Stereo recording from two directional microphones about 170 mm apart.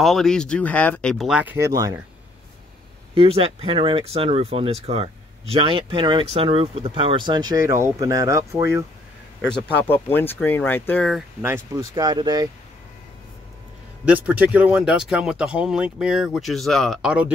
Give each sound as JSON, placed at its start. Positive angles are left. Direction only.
{"t": 0.0, "sound": "speech", "side_deg": 0}
{"t": 1.7, "sound": "speech", "side_deg": -20}
{"t": 3.2, "sound": "speech", "side_deg": -35}
{"t": 9.8, "sound": "speech", "side_deg": 10}
{"t": 11.4, "sound": "speech", "side_deg": -20}
{"t": 14.0, "sound": "speech", "side_deg": -10}